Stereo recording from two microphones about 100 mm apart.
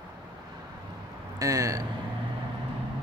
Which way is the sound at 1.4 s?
35° right (ahead or behind).